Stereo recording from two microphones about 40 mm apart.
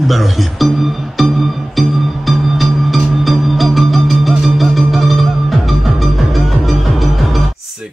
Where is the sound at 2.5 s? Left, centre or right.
Centre.